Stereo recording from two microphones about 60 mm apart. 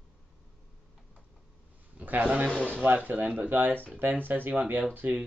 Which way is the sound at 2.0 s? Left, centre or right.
Right.